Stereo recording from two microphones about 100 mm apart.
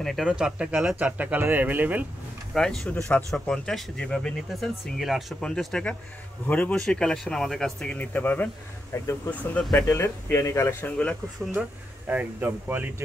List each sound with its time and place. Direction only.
0.0 s speech: centre (ahead or behind); by 2.0 s 20° right (ahead or behind)
2.5 s speech: 5° left (ahead or behind)
2.9 s speech: 15° left (ahead or behind)
3.3 s speech: 5° left (ahead or behind); by 9.1 s 30° left (ahead or behind)
9.3 s speech: 15° left (ahead or behind)
9.8 s speech: 25° left (ahead or behind)
10.9 s speech: 15° left (ahead or behind)
11.4 s speech: 10° right (ahead or behind)
12.1 s speech: 20° right (ahead or behind)